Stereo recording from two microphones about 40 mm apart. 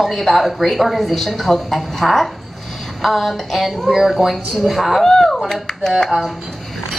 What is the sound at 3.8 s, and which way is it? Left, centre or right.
Speech, centre.